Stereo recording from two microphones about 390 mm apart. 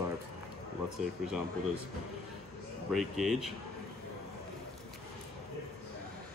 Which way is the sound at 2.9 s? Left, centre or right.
Centre.